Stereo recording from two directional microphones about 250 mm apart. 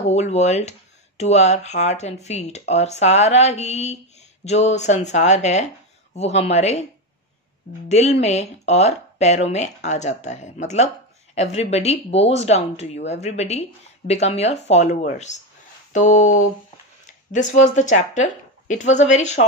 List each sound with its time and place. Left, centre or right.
0.1 s speech: left
7.9 s speech: left